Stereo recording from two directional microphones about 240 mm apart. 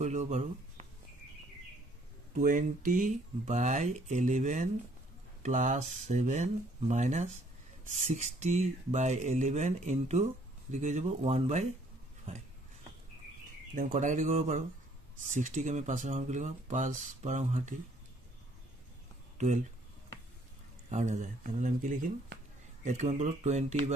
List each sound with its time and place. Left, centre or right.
0.0 s speech: right
2.3 s speech: right
13.7 s speech: right
19.3 s a sound: right
20.9 s speech: right